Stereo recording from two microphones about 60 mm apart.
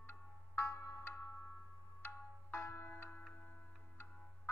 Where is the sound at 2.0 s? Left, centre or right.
Left.